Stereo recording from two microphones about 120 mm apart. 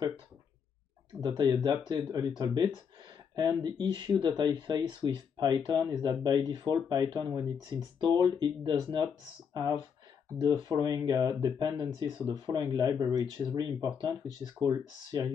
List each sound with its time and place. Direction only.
1.2 s speech: 35° right (ahead or behind)